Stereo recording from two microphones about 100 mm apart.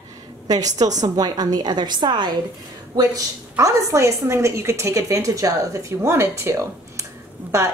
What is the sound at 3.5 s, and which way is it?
A woman's voice, 30° right (ahead or behind).